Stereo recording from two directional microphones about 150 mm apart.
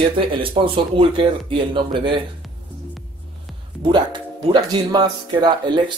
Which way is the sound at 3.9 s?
30° right (ahead or behind).